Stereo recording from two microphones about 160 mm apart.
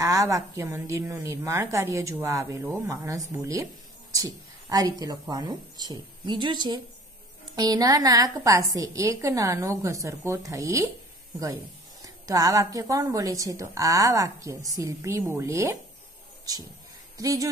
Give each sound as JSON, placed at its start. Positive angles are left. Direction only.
{"t": 0.0, "sound": "a woman's voice", "side_deg": -20}
{"t": 12.3, "sound": "a woman's voice", "side_deg": -20}
{"t": 17.2, "sound": "a woman's voice", "side_deg": -20}